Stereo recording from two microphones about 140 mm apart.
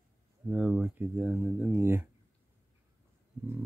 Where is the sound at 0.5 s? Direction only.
10° right (ahead or behind).